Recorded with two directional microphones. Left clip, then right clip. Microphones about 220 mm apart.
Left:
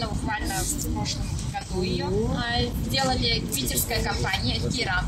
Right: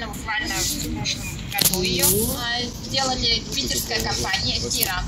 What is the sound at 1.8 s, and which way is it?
Speech, 5° left (ahead or behind).